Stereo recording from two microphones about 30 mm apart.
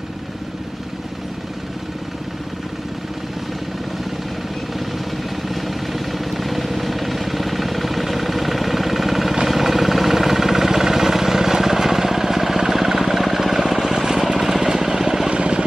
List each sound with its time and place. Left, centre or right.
5.5 s vehicle: centre
9.5 s a sound: centre
14.4 s vehicle: centre
15.2 s vehicle: right